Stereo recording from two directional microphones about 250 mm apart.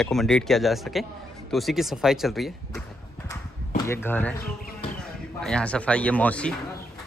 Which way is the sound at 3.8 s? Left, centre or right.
Centre.